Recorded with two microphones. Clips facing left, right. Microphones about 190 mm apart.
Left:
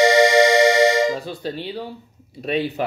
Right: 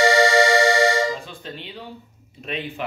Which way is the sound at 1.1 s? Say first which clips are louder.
Left 6 dB; 40° left (ahead or behind).